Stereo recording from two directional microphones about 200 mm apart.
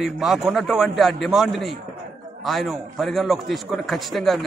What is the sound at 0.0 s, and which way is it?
A man's voice, centre (ahead or behind).